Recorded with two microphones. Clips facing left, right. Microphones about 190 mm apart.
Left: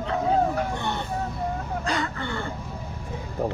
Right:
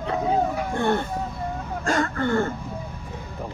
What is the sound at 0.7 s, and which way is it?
Speech, 50° right (ahead or behind).